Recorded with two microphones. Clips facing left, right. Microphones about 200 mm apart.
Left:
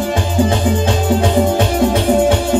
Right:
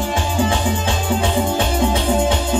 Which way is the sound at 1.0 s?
45° left (ahead or behind).